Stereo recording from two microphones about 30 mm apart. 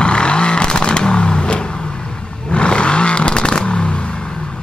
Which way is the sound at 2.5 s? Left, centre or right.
Left.